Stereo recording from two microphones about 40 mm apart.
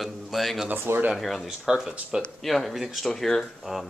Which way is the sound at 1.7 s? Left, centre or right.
Centre.